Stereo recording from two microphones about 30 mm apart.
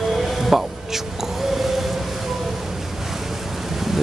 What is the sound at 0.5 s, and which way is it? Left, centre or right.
Speech, centre.